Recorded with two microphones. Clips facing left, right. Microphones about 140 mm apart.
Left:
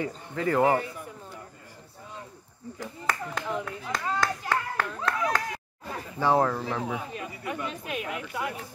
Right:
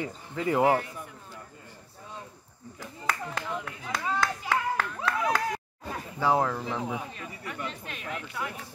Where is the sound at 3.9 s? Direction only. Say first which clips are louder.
Even; 10° right (ahead or behind).